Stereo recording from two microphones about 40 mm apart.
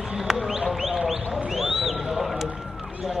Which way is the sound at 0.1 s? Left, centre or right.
Centre.